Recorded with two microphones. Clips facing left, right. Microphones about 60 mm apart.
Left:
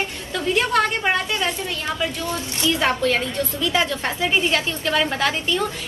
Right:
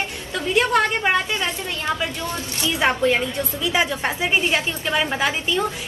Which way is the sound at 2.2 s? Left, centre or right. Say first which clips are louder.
Left 2 dB; right.